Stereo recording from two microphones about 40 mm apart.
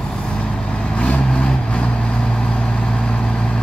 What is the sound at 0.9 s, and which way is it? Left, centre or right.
Vehicle, left.